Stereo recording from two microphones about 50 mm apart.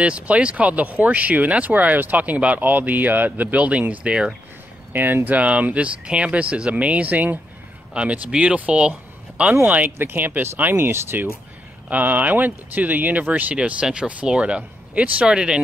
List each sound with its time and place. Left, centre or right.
0.0 s speech: right
3.5 s speech: right
4.9 s speech: right
9.8 s speech: right
11.9 s speech: right; by 15.6 s centre